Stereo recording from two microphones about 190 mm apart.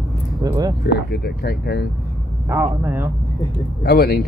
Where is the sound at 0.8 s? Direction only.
55° left (ahead or behind).